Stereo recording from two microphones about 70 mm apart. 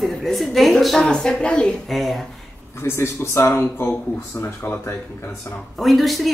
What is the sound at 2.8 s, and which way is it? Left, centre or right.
Speech, left.